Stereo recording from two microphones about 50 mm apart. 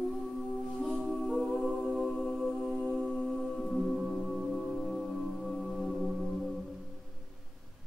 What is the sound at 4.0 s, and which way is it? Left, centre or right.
Singing bowl, centre.